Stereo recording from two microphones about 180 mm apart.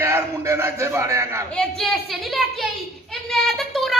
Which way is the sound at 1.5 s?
5° left (ahead or behind).